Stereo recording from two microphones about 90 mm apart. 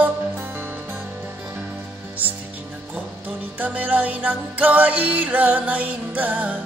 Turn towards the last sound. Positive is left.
turn(degrees=-20)  # may be behind; listen again after turning